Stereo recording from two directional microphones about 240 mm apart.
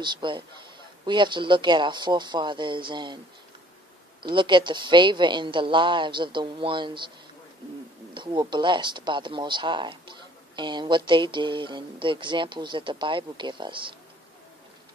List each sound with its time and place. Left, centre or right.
0.0 s speech: centre
4.2 s speech: centre
8.1 s speech: centre